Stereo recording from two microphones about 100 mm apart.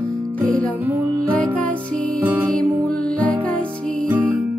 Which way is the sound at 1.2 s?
15° left (ahead or behind).